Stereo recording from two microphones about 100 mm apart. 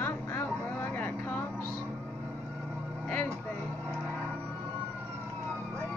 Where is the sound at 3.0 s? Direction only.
20° left (ahead or behind).